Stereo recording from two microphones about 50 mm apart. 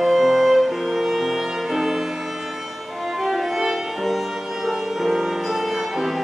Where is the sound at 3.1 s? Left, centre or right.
Centre.